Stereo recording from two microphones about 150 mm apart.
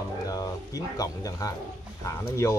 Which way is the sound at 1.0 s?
25° left (ahead or behind).